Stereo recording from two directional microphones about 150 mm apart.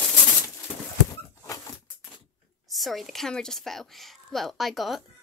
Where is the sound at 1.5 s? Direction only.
20° left (ahead or behind).